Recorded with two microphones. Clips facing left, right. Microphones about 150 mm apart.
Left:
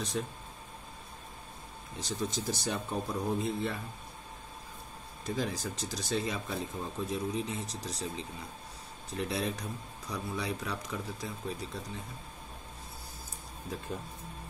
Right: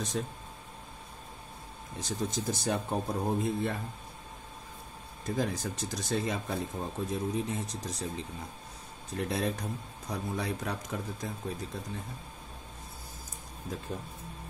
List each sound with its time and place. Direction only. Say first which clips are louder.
0.2 s speech: right 1 dB; 50° right (ahead or behind)
2.0 s speech: right 1 dB; 55° right (ahead or behind)
5.2 s speech: right 2 dB; 55° right (ahead or behind)